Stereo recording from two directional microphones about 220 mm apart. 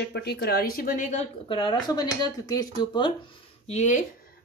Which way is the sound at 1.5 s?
20° left (ahead or behind).